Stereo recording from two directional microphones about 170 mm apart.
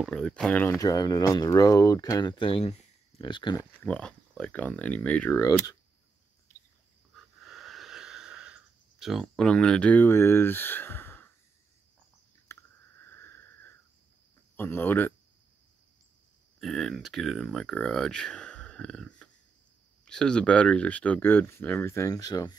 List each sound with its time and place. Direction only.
0.0 s speech: 5° left (ahead or behind)
0.7 s speech: 20° left (ahead or behind)
3.8 s speech: 5° left (ahead or behind)
5.4 s speech: 20° left (ahead or behind)
7.2 s sniff: centre (ahead or behind)
13.0 s a sound: 15° left (ahead or behind)
14.6 s speech: 15° left (ahead or behind)
16.5 s speech: centre (ahead or behind); by 22.6 s 20° left (ahead or behind)